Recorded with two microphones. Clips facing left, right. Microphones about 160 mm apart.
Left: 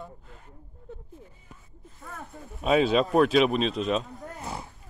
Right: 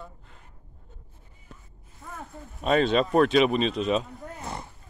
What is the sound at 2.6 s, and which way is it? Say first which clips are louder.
Speech: even; 5° left (ahead or behind).